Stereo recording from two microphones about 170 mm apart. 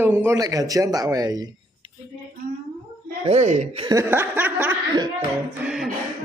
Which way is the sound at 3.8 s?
20° right (ahead or behind).